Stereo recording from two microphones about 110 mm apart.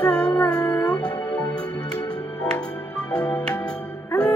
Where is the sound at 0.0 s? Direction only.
10° left (ahead or behind).